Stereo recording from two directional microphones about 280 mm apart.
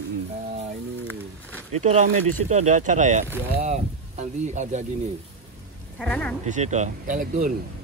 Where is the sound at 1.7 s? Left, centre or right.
Right.